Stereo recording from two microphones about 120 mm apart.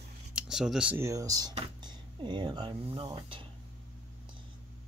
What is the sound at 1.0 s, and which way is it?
Speech, 25° right (ahead or behind).